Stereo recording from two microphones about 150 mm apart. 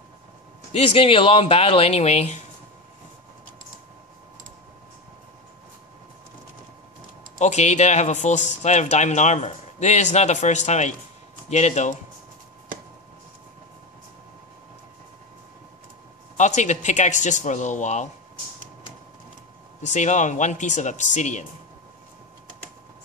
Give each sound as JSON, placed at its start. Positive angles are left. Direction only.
{"t": 0.7, "sound": "speech", "side_deg": 40}
{"t": 7.3, "sound": "speech", "side_deg": 50}
{"t": 16.3, "sound": "speech", "side_deg": 55}
{"t": 19.8, "sound": "speech", "side_deg": 55}